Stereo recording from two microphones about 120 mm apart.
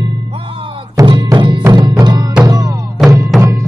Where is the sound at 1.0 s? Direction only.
40° right (ahead or behind).